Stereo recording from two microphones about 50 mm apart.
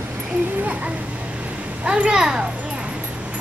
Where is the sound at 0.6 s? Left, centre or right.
Right.